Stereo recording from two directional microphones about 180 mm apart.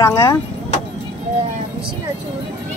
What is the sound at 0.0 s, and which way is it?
Speech, 15° left (ahead or behind).